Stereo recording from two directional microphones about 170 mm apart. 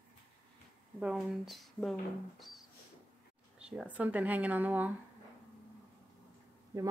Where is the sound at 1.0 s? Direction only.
5° right (ahead or behind).